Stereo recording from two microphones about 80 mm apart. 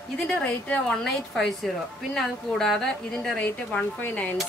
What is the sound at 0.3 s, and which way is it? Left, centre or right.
A woman's voice, centre.